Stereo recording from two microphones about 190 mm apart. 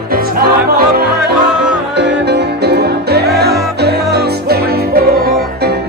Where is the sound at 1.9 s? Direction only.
60° right (ahead or behind).